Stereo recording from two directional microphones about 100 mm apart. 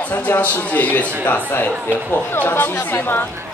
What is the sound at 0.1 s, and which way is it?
Speech, 15° left (ahead or behind).